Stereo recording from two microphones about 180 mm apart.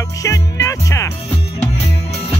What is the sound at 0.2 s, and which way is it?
Music, 15° left (ahead or behind).